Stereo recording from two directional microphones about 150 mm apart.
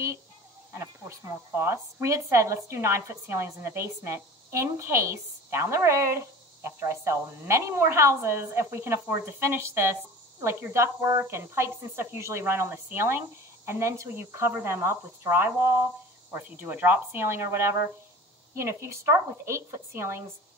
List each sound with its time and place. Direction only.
0.7 s a woman's voice: 15° right (ahead or behind)